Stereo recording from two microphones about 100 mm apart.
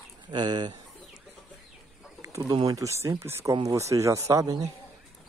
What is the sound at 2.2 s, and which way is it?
Bird, 35° right (ahead or behind).